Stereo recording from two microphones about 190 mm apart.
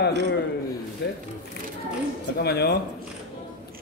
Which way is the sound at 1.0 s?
60° left (ahead or behind).